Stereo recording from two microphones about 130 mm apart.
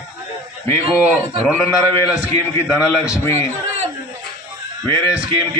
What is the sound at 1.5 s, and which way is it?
Speech, 20° left (ahead or behind).